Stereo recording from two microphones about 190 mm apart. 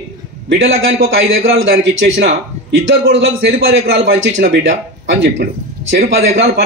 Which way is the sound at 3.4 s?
55° right (ahead or behind).